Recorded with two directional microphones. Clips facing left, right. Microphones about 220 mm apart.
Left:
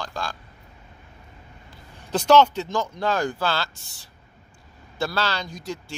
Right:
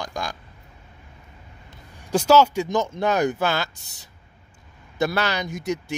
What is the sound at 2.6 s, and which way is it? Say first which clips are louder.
Speech: right 3 dB; 20° right (ahead or behind).